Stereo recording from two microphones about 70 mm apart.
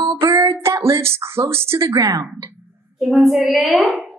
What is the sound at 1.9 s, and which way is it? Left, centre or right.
Speech, right.